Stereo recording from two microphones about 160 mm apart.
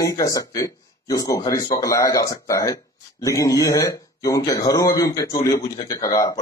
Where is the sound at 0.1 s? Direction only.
20° left (ahead or behind).